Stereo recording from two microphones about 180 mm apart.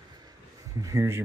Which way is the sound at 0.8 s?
15° right (ahead or behind).